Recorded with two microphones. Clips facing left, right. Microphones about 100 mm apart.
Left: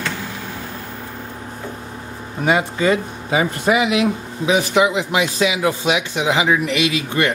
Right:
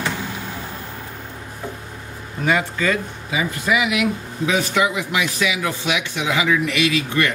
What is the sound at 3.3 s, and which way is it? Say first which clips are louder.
Speech: left 5 dB; 35° left (ahead or behind).